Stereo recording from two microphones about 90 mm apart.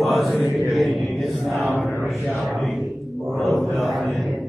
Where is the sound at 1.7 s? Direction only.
25° left (ahead or behind).